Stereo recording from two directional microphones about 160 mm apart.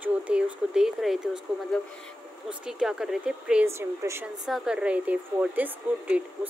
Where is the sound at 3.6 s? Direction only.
15° right (ahead or behind).